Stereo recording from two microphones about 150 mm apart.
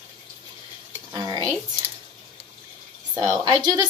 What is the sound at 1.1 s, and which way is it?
Speech, 25° right (ahead or behind).